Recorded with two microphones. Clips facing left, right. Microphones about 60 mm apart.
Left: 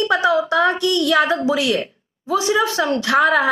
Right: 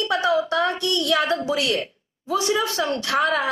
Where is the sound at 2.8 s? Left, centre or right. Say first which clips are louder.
Left 5 dB; centre.